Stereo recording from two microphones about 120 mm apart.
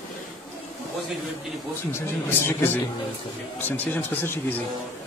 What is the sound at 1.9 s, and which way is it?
Speech, 20° left (ahead or behind).